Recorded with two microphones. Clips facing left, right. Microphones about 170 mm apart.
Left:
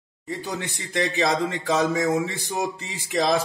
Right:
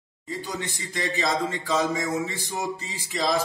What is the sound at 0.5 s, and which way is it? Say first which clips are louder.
Speech: left 2 dB; 65° left (ahead or behind).